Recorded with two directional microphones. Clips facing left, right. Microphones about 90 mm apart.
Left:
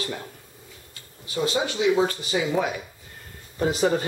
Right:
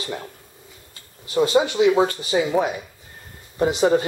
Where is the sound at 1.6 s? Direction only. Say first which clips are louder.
Right 5 dB; 45° right (ahead or behind).